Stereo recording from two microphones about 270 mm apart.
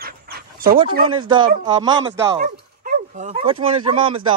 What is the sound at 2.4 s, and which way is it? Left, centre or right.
Speech, right.